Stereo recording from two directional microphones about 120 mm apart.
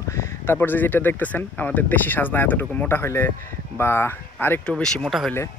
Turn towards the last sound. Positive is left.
turn(degrees=0)  # may be behind; listen again after turning